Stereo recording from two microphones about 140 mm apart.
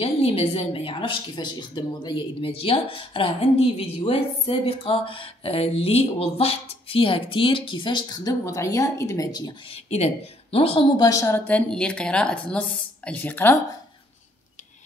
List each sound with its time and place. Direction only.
0.0 s a woman's voice: 45° left (ahead or behind); by 9.5 s 25° left (ahead or behind)
9.8 s speech: 50° left (ahead or behind)
11.0 s a woman's voice: 25° left (ahead or behind)